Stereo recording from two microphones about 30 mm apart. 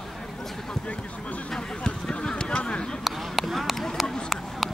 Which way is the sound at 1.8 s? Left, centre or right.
Left.